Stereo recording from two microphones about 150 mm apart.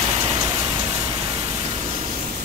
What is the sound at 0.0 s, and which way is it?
Vehicle, 40° right (ahead or behind).